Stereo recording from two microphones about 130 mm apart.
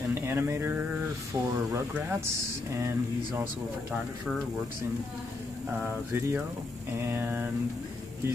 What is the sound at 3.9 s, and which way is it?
Speech, centre (ahead or behind).